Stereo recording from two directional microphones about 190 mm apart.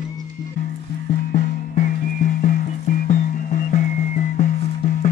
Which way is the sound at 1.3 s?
50° left (ahead or behind).